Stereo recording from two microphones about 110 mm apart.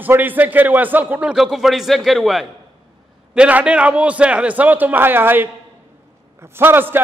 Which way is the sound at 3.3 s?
10° right (ahead or behind).